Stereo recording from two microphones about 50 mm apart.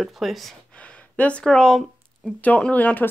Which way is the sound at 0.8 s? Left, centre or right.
Left.